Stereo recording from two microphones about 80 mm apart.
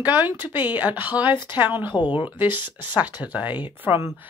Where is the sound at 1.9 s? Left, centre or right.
Left.